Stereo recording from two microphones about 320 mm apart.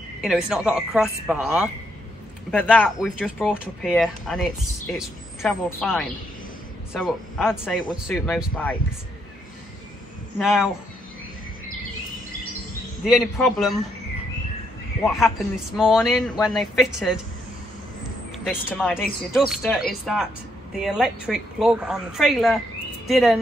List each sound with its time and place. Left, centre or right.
0.2 s speech: centre
10.4 s speech: centre
13.0 s speech: centre
15.0 s speech: centre
18.4 s speech: centre